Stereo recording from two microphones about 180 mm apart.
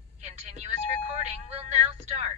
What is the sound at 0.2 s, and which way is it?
Speech, 40° right (ahead or behind).